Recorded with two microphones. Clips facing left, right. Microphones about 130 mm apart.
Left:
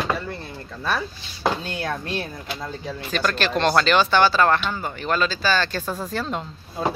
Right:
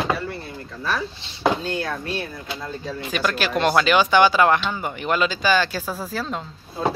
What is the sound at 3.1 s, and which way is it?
Speech, 10° right (ahead or behind).